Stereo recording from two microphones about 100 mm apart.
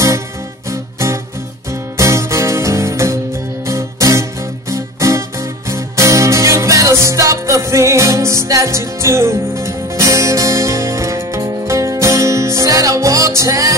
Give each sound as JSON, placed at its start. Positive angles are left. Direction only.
{"t": 0.7, "sound": "music", "side_deg": -30}